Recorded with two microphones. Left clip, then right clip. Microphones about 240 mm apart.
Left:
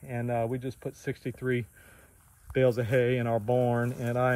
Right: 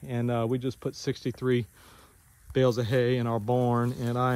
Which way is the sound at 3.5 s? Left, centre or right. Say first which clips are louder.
Right 2 dB; centre.